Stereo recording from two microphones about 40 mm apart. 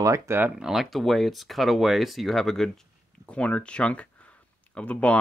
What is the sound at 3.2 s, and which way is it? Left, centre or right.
Speech, left.